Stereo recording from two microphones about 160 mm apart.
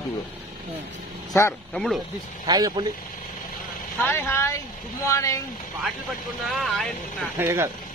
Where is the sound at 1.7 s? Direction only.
Centre (ahead or behind).